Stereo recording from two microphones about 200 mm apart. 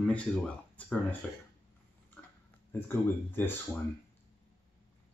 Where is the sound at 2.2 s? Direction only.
5° left (ahead or behind).